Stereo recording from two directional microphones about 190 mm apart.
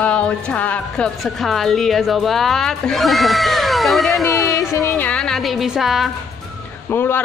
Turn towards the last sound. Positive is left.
turn(degrees=10)  # may be behind; listen again after turning